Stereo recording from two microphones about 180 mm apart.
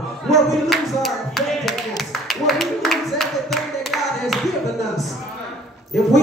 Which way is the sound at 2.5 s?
Centre (ahead or behind).